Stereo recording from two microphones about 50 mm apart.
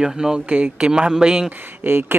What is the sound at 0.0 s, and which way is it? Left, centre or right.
Speech, centre.